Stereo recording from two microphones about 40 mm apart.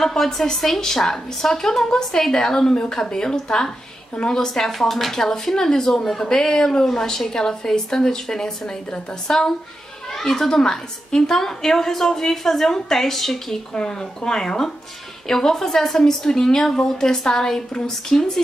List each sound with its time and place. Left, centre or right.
0.0 s a woman's voice: centre
10.1 s a child's voice: centre
13.7 s a woman's voice: centre